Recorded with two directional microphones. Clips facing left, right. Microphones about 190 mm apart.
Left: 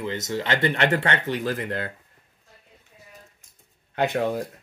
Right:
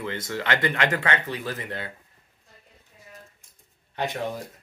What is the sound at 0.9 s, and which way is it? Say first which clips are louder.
Speech: left 3 dB; 40° left (ahead or behind).